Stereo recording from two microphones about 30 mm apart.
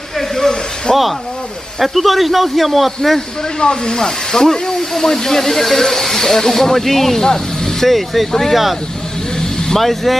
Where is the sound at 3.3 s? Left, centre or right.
Left; by 8.3 s centre.